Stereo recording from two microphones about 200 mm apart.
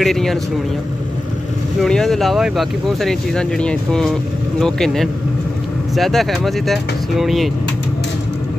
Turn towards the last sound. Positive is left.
turn(degrees=0)  # may be behind; listen again after turning